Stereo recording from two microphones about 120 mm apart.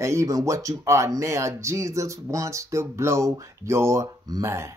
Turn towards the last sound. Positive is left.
turn(degrees=-25)  # may be behind; listen again after turning